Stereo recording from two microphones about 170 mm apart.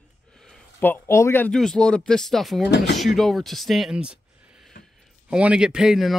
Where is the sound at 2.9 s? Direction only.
Centre (ahead or behind).